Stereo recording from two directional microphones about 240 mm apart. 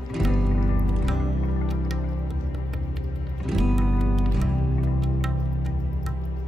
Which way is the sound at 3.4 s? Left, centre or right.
Centre.